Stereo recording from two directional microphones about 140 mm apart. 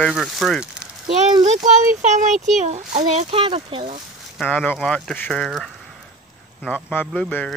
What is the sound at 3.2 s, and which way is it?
Speech, 40° right (ahead or behind).